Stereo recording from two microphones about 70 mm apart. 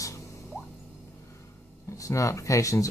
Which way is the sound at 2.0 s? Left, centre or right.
Left.